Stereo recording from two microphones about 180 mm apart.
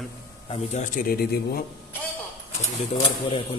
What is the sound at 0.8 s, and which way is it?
Speech, 50° left (ahead or behind).